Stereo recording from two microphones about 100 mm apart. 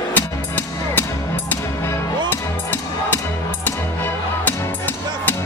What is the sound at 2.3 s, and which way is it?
Music, 20° left (ahead or behind).